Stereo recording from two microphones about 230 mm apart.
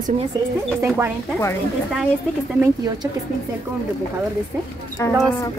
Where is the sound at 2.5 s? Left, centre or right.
Centre.